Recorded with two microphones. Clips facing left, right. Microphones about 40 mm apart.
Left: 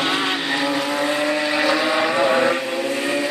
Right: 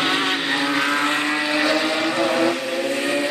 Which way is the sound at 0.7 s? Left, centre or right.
Right.